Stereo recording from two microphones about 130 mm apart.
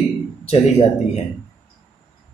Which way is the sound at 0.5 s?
50° left (ahead or behind).